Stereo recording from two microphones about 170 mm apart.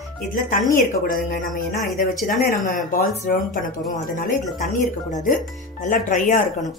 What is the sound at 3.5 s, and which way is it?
A woman's voice, 50° left (ahead or behind).